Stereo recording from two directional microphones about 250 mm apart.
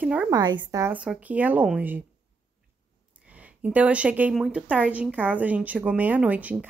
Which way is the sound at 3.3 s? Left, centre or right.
Centre.